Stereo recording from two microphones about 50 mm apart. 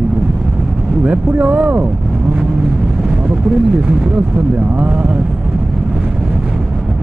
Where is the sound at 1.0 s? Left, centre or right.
Right.